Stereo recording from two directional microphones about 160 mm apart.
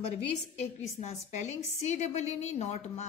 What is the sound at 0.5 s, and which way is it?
A woman's voice, 45° left (ahead or behind).